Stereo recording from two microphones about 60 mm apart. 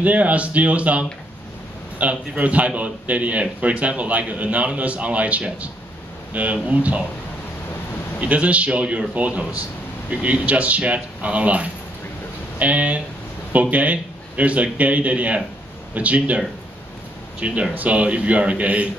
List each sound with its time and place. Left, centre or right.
0.0 s a man's voice: right
8.2 s a man's voice: right